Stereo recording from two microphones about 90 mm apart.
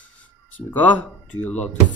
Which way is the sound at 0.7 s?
20° left (ahead or behind).